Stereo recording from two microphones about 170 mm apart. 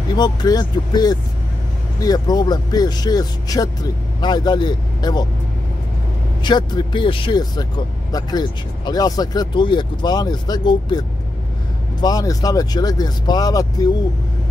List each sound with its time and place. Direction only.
0.1 s speech: 25° left (ahead or behind)
6.4 s speech: 25° left (ahead or behind)